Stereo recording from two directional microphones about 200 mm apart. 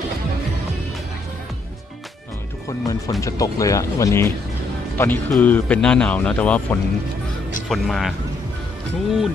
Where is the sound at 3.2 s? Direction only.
15° left (ahead or behind); by 8.1 s centre (ahead or behind).